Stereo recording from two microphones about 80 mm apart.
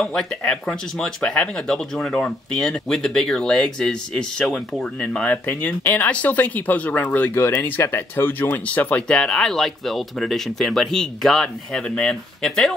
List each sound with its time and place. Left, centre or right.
0.0 s speech: centre; by 7.2 s left
7.3 s speech: left; by 12.7 s centre